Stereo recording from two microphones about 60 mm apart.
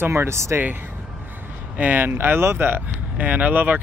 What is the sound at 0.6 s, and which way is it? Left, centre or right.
Speech, right.